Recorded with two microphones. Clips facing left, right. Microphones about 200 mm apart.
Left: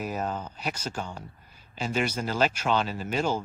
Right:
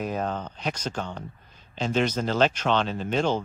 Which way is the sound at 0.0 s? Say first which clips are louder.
Right 2 dB; 5° left (ahead or behind).